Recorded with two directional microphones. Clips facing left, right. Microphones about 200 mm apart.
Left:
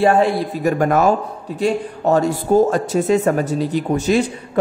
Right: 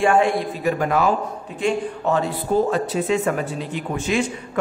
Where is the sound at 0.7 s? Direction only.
50° left (ahead or behind).